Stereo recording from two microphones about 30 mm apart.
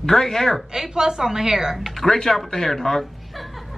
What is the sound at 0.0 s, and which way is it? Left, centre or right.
Speech, centre.